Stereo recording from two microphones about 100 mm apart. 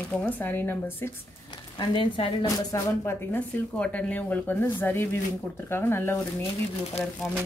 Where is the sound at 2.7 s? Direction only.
30° left (ahead or behind).